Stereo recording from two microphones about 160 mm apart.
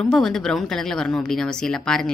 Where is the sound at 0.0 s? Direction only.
5° left (ahead or behind).